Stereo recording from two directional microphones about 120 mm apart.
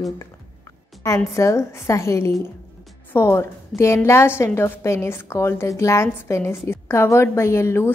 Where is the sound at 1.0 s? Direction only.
25° left (ahead or behind).